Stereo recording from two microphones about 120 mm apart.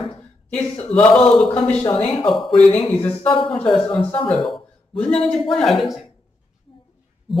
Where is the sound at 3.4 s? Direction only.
5° left (ahead or behind).